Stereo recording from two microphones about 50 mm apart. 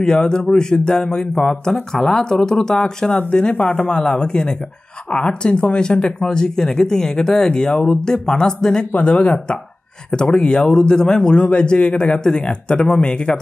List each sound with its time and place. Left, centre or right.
0.0 s speech: centre
3.1 s speech: left
3.9 s speech: centre
8.9 s speech: left